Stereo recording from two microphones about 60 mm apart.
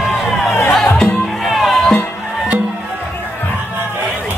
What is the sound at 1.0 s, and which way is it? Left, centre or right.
Music, centre.